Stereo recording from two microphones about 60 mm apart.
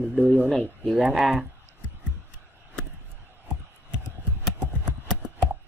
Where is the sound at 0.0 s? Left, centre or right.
Right.